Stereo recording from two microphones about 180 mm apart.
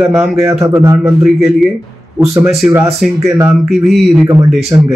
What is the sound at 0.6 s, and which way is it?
Speech, 15° right (ahead or behind).